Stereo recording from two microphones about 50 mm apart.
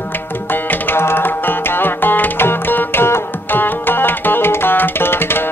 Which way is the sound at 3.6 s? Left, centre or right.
Left.